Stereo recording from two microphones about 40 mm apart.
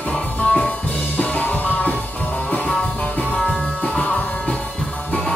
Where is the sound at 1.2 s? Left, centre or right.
Left.